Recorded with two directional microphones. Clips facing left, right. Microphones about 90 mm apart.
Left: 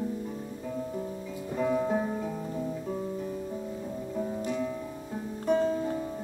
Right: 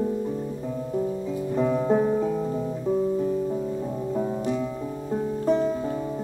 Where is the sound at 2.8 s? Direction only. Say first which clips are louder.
Right 10 dB; 15° right (ahead or behind).